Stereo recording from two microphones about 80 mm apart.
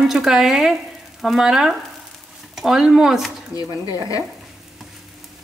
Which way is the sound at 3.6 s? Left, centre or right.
Left.